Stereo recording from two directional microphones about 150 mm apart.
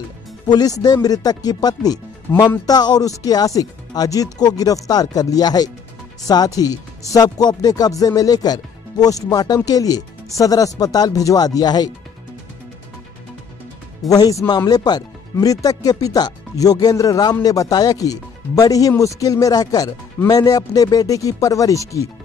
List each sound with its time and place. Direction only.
0.5 s speech: 25° left (ahead or behind)
14.0 s speech: 25° left (ahead or behind)